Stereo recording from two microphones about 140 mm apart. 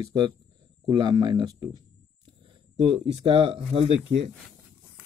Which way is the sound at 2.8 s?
40° right (ahead or behind).